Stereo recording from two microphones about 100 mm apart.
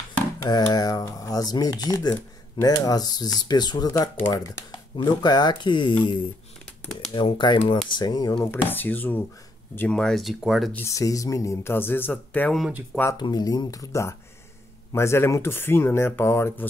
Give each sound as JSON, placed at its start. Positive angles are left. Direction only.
{"t": 0.4, "sound": "speech", "side_deg": 45}
{"t": 4.9, "sound": "speech", "side_deg": 45}
{"t": 7.2, "sound": "speech", "side_deg": 55}
{"t": 8.5, "sound": "speech", "side_deg": 20}
{"t": 9.8, "sound": "speech", "side_deg": 10}
{"t": 10.8, "sound": "speech", "side_deg": 30}
{"t": 13.2, "sound": "speech", "side_deg": 40}